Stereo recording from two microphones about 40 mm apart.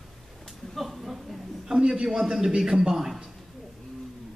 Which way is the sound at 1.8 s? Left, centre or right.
Centre.